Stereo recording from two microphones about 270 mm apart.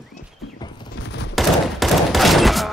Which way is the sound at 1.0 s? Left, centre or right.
Left.